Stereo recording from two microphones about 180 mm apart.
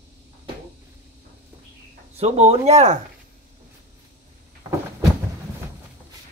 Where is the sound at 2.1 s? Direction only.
35° right (ahead or behind).